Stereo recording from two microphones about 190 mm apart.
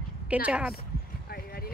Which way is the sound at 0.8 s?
55° left (ahead or behind).